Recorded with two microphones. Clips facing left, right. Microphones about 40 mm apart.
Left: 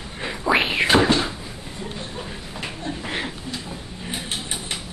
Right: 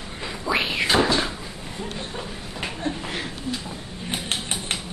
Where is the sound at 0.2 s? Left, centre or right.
Left.